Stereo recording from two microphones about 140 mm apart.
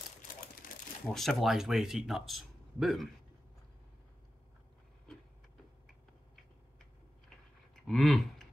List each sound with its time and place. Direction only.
0.6 s crumpling: 80° left
1.0 s speech: centre (ahead or behind)
7.8 s a sound: centre (ahead or behind)